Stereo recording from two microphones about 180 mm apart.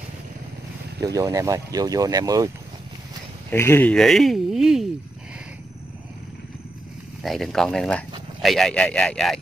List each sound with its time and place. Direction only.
1.0 s speech: 20° right (ahead or behind)
3.4 s speech: 15° left (ahead or behind)
7.2 s speech: centre (ahead or behind)